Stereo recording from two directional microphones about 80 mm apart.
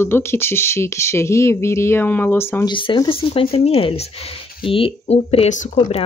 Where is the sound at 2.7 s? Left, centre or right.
Left.